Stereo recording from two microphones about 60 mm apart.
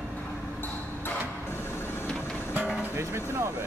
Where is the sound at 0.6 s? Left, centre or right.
Left.